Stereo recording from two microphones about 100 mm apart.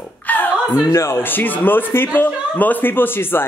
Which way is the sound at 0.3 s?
20° left (ahead or behind).